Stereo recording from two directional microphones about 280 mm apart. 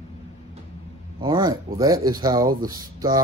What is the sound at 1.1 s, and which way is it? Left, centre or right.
Speech, centre.